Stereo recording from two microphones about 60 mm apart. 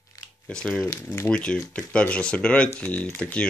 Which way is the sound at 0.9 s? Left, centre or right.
Left.